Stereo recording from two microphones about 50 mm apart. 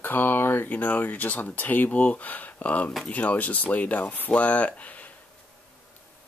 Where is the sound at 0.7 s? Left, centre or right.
Left.